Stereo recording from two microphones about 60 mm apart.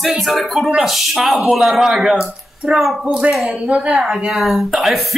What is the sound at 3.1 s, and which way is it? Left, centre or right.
A woman's voice, centre.